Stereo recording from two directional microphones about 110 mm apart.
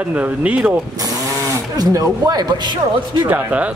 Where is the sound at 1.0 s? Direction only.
30° right (ahead or behind).